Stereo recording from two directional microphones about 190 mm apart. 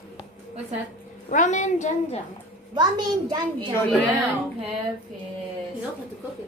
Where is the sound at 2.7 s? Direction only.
20° right (ahead or behind).